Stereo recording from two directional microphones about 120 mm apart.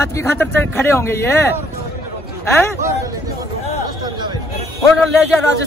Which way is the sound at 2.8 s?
25° right (ahead or behind).